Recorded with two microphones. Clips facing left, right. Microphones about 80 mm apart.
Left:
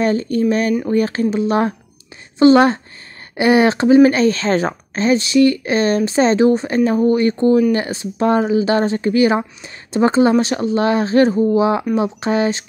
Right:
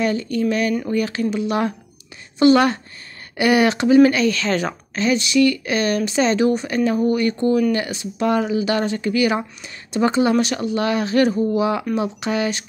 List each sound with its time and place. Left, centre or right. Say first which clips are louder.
0.0 s speech: left 4 dB; left